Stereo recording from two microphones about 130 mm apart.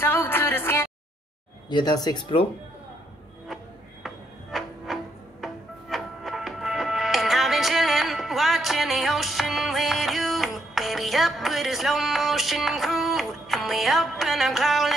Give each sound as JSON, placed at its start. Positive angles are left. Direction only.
{"t": 0.0, "sound": "music", "side_deg": 15}
{"t": 1.7, "sound": "speech", "side_deg": 35}
{"t": 4.0, "sound": "a sound", "side_deg": 0}
{"t": 5.4, "sound": "music", "side_deg": 0}